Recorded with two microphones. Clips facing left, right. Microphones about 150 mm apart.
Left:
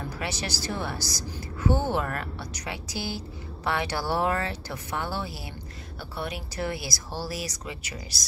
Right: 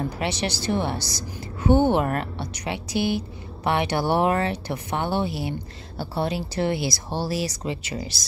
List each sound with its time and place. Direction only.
0.2 s a woman's voice: 25° right (ahead or behind)